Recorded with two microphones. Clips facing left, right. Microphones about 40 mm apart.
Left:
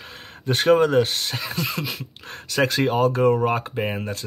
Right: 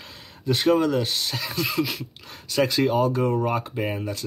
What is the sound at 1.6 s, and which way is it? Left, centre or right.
Speech, centre.